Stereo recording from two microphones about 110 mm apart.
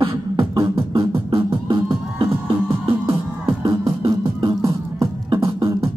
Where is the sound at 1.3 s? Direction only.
50° right (ahead or behind).